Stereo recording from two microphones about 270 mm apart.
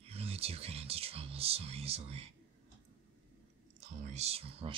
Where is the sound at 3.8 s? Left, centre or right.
Right.